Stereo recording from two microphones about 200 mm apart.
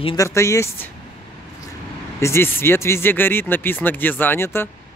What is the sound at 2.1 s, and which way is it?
Speech, 15° left (ahead or behind).